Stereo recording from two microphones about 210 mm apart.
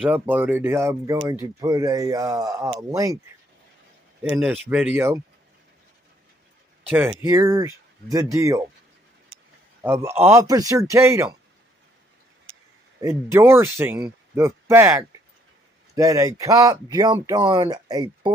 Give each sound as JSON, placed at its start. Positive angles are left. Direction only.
{"t": 0.0, "sound": "speech", "side_deg": -10}
{"t": 4.2, "sound": "speech", "side_deg": -10}
{"t": 6.9, "sound": "speech", "side_deg": -10}
{"t": 9.8, "sound": "speech", "side_deg": -10}
{"t": 13.0, "sound": "speech", "side_deg": -10}